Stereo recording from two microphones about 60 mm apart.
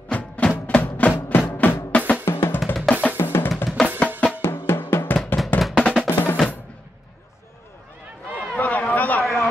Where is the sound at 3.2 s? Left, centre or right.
Left.